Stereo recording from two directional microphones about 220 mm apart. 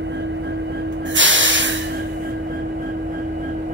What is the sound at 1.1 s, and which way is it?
Snort, 60° right (ahead or behind).